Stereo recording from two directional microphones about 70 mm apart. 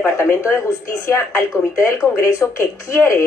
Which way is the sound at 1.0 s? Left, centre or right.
Left.